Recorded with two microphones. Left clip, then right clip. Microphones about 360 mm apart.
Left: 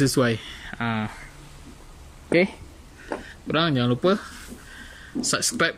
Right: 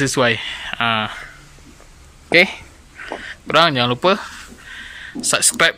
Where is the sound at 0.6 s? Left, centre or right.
Right.